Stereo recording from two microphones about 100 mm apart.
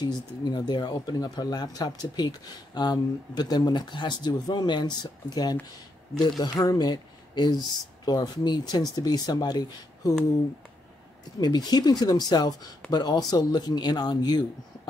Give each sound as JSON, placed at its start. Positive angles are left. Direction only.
{"t": 0.0, "sound": "speech", "side_deg": 45}
{"t": 11.3, "sound": "speech", "side_deg": 45}